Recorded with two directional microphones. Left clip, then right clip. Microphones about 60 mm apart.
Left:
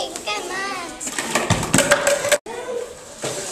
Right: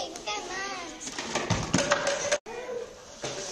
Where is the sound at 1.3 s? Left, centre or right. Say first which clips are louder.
Left 9 dB; left.